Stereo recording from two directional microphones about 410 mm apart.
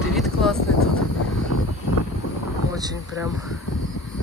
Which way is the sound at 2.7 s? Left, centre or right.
Centre.